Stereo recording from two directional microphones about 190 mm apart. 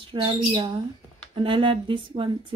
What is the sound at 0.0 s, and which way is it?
Speech, 25° right (ahead or behind).